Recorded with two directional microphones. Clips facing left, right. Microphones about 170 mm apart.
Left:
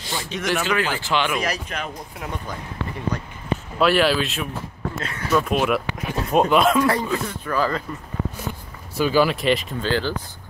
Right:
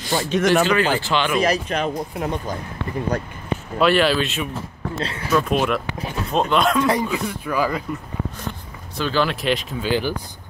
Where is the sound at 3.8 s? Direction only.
5° left (ahead or behind).